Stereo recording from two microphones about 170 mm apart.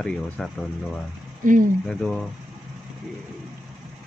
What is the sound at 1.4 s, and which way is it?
Speech, 50° right (ahead or behind).